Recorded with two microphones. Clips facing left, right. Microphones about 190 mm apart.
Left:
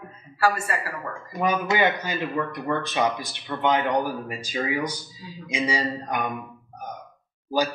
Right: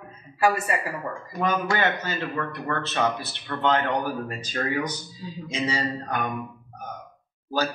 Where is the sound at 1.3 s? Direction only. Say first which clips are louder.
Left 2 dB; 10° left (ahead or behind).